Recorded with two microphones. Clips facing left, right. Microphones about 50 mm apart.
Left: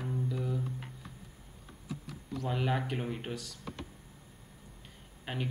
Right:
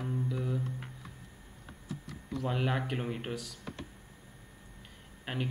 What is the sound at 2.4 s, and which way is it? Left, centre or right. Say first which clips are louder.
Speech: even; centre.